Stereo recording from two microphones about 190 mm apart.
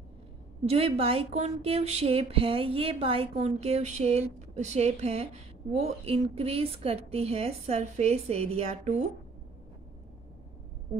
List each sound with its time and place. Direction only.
0.7 s speech: 30° right (ahead or behind)